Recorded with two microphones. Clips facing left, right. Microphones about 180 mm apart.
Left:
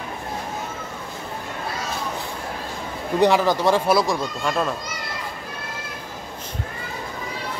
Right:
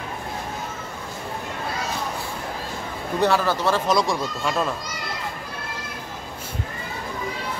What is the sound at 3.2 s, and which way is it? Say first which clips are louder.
Speech: left 3 dB; 15° left (ahead or behind).